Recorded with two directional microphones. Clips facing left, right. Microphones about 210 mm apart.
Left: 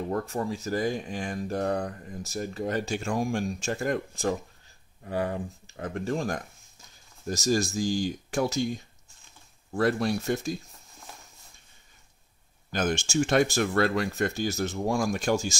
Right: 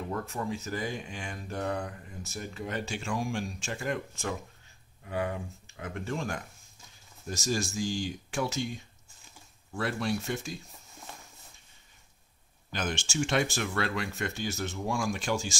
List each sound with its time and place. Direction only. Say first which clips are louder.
0.1 s speech: left 3 dB; 35° left (ahead or behind)
9.8 s speech: left 6 dB; 40° left (ahead or behind)
12.7 s speech: left 6 dB; 40° left (ahead or behind)